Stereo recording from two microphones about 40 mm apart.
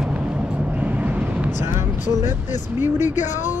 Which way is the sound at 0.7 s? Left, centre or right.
Right.